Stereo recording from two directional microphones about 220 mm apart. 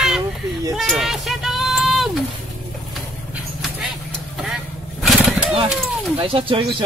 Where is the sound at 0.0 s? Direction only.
Centre (ahead or behind).